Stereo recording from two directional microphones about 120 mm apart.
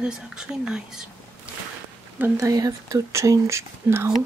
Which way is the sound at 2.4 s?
30° right (ahead or behind).